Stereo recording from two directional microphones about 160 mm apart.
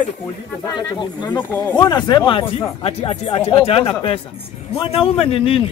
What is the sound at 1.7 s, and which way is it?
Speech, 25° left (ahead or behind).